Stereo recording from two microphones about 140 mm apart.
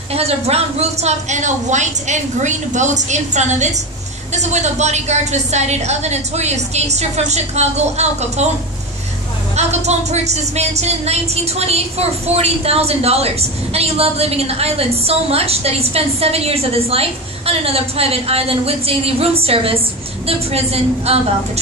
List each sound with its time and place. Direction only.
0.1 s a woman's voice: 45° right (ahead or behind)
9.6 s speech: 50° right (ahead or behind)